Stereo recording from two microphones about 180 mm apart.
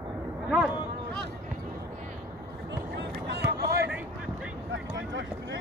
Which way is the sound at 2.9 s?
65° right (ahead or behind).